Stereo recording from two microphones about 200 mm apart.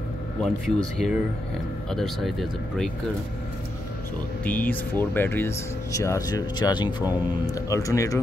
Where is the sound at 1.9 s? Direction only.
Centre (ahead or behind).